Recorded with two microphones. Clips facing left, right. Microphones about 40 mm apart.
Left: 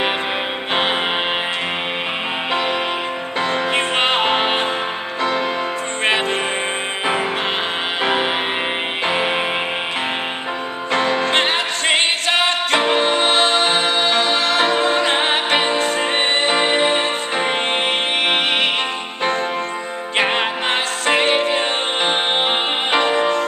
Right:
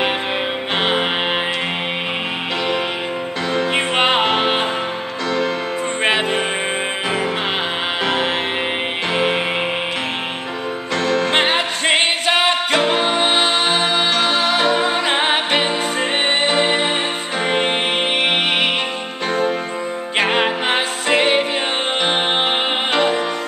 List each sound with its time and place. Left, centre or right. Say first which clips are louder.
0.7 s music: even; centre
3.7 s music: right 2 dB; centre
6.0 s music: even; centre
8.0 s music: left 1 dB; centre
10.9 s music: left 1 dB; centre
11.2 s music: right 1 dB; centre
20.2 s music: right 1 dB; centre